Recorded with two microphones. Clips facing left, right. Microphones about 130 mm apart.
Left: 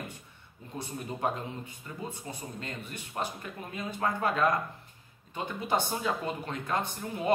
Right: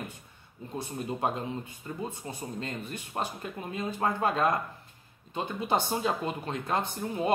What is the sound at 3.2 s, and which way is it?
Speech, 30° right (ahead or behind).